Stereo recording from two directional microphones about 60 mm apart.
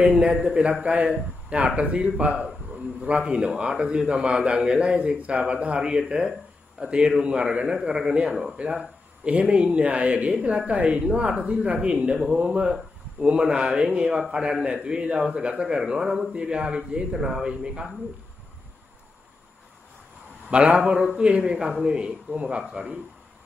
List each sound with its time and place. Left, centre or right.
0.0 s a sound: centre
0.5 s speech: centre
20.4 s speech: centre